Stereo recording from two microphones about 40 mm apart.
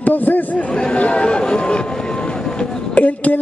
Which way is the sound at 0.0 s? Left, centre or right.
Left.